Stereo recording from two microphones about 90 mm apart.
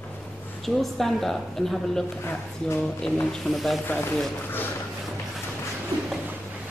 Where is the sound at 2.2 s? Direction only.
25° left (ahead or behind).